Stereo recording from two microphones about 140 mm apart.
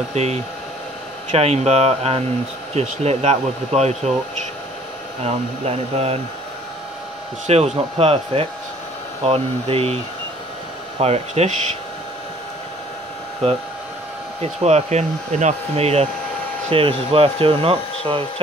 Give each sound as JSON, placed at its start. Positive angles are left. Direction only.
{"t": 0.1, "sound": "speech", "side_deg": -50}
{"t": 5.2, "sound": "speech", "side_deg": -45}
{"t": 7.4, "sound": "speech", "side_deg": -50}
{"t": 11.0, "sound": "speech", "side_deg": -50}
{"t": 14.4, "sound": "speech", "side_deg": -50}